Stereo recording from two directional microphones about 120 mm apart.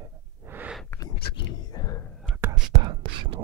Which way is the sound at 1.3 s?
35° left (ahead or behind).